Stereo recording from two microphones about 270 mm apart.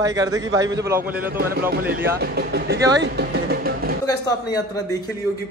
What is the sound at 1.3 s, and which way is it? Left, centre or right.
Speech, right.